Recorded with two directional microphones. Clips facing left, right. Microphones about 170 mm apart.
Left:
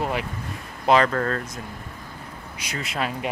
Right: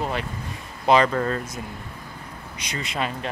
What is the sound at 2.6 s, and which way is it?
Speech, 5° left (ahead or behind).